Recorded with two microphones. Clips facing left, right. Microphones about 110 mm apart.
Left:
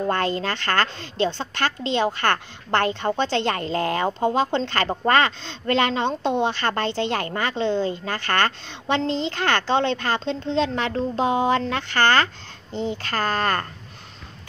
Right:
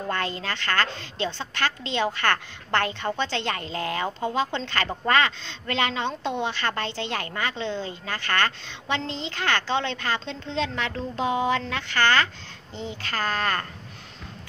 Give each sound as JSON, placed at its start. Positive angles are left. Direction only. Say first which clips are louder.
{"t": 0.1, "sound": "a woman's voice", "louder": "left 5 dB", "side_deg": 40}